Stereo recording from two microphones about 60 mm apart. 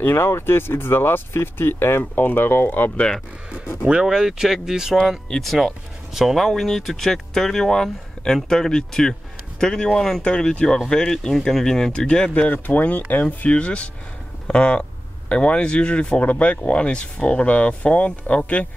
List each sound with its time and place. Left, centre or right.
0.0 s speech: left
3.8 s speech: centre
5.3 s speech: centre
12.5 s speech: left